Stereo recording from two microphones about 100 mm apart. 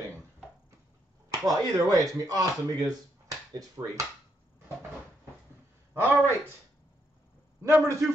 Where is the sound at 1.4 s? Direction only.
40° right (ahead or behind).